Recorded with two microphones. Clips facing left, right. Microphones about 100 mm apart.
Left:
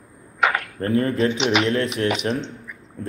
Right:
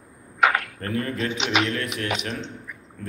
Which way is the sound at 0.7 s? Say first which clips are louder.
Left 7 dB; 30° left (ahead or behind).